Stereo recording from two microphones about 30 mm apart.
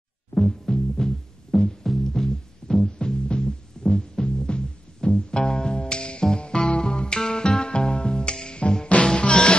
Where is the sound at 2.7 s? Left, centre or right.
Centre.